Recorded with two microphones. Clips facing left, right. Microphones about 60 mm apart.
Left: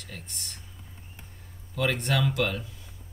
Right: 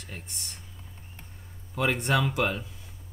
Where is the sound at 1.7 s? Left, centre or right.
Centre.